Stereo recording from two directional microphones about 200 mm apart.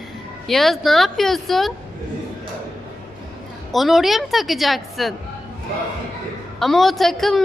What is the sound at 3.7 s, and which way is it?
Speech, centre (ahead or behind).